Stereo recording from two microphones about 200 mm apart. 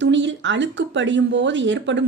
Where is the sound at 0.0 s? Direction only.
65° right (ahead or behind).